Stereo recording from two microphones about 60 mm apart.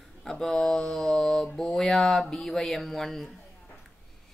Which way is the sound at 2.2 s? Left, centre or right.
Centre.